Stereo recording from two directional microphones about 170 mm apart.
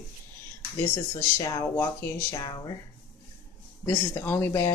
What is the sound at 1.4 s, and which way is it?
Speech, 20° left (ahead or behind).